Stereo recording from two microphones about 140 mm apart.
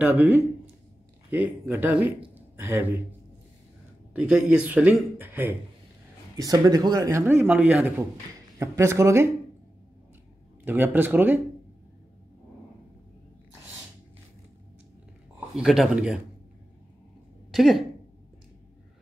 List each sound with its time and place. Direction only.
0.0 s speech: 10° right (ahead or behind)
2.3 s a sound: 15° right (ahead or behind)
4.1 s speech: 5° right (ahead or behind)
6.3 s speech: 25° right (ahead or behind); by 7.9 s 10° right (ahead or behind)
8.5 s speech: 20° right (ahead or behind)
10.6 s speech: 15° right (ahead or behind)
15.5 s speech: 5° right (ahead or behind)
17.5 s speech: centre (ahead or behind)